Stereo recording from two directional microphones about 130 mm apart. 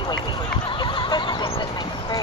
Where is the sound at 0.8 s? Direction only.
40° left (ahead or behind).